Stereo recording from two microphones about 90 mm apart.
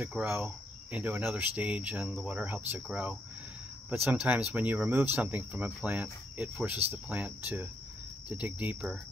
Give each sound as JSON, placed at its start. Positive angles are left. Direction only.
{"t": 0.0, "sound": "speech", "side_deg": -15}